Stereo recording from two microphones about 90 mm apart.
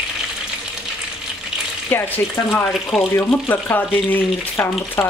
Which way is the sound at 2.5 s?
25° left (ahead or behind).